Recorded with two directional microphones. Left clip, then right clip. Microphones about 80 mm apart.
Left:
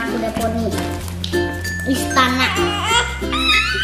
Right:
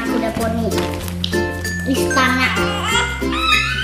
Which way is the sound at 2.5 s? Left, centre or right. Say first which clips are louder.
Left 1 dB; left.